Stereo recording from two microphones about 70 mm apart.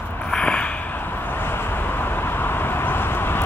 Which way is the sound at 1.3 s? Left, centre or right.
Left.